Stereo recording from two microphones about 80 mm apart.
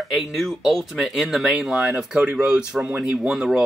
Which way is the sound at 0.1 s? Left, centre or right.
Centre.